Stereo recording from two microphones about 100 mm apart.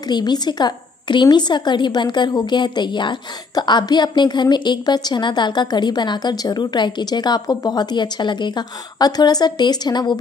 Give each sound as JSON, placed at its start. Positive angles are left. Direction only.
{"t": 0.1, "sound": "a woman's voice", "side_deg": 45}